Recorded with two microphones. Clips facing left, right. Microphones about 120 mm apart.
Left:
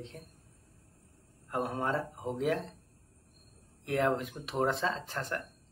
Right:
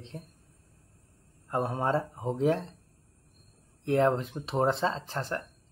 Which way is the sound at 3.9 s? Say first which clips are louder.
Right 5 dB; 30° right (ahead or behind).